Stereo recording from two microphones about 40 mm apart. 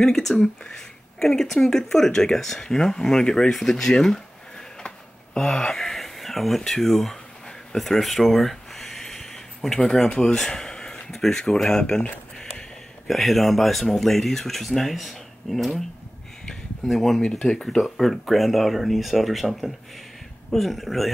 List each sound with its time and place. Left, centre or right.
0.0 s speech: centre
4.8 s a sound: centre
10.0 s speech: centre
13.0 s speech: centre
16.8 s speech: centre
17.2 s speech: centre
17.7 s speech: centre